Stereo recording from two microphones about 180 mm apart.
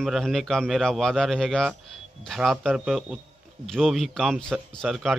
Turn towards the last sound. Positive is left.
turn(degrees=0)  # may be behind; listen again after turning